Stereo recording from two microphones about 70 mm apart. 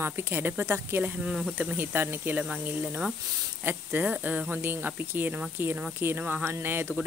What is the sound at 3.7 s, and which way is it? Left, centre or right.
Speech, right.